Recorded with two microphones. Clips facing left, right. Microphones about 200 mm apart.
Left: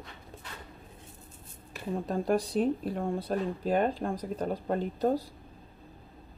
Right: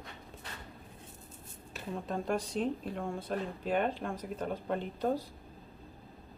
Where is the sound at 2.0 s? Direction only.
35° left (ahead or behind).